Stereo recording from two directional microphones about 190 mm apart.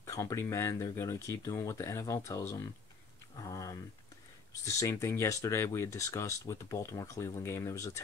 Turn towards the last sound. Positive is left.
turn(degrees=15)  # may be behind; listen again after turning